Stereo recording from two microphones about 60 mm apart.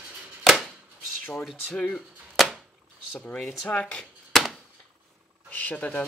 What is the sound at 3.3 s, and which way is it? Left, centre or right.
Speech, centre.